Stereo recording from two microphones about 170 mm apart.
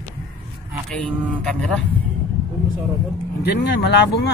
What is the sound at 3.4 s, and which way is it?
Speech, 85° left.